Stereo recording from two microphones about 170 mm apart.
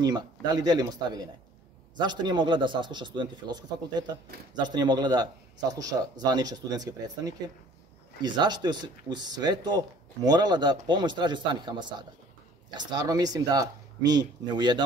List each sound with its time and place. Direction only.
0.0 s speech: 25° right (ahead or behind)